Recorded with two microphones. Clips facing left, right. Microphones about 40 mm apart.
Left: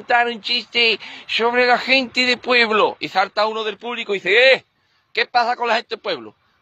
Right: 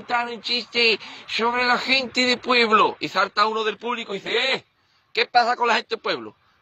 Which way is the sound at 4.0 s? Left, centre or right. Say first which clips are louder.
Left 9 dB; left.